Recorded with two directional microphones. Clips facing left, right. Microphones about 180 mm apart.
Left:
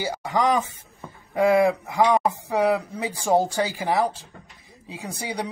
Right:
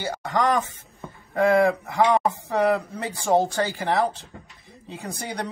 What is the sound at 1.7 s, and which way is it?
A man's voice, centre (ahead or behind).